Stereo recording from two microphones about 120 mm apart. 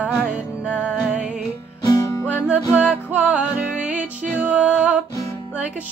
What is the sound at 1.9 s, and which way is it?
Music, 30° left (ahead or behind).